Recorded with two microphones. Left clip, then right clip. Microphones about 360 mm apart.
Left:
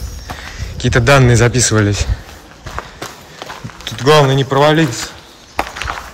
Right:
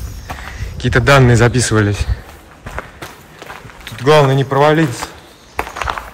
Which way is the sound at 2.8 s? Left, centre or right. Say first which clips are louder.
Left 1 dB; centre.